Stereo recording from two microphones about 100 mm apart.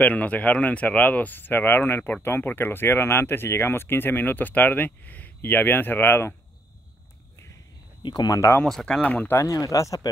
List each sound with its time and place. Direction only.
0.0 s speech: 15° left (ahead or behind)
8.0 s speech: 45° left (ahead or behind)
8.6 s speech: 5° left (ahead or behind)
9.4 s speech: 35° left (ahead or behind)